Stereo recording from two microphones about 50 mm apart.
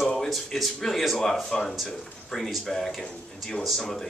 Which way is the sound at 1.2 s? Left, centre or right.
Centre.